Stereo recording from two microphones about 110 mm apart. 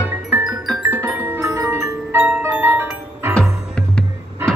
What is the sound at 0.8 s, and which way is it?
Music, 20° right (ahead or behind).